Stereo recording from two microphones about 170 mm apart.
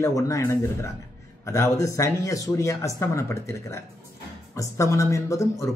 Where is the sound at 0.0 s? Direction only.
15° left (ahead or behind).